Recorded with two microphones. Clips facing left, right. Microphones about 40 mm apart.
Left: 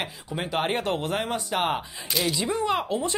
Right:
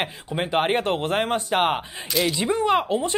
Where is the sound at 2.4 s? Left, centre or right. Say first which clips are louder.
Right 7 dB; right.